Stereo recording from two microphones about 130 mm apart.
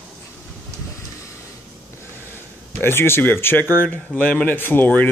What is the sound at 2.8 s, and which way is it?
Speech, 20° left (ahead or behind).